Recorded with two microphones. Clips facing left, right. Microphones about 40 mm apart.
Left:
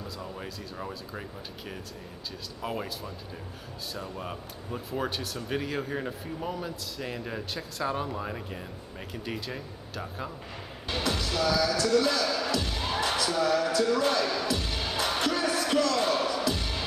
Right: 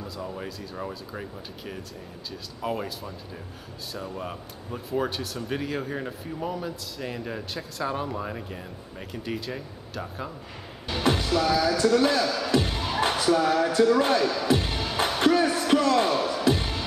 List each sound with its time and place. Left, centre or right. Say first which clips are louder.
0.0 s speech: right 4 dB; centre
2.6 s speech: right 4 dB; centre
11.2 s music: right 1 dB; right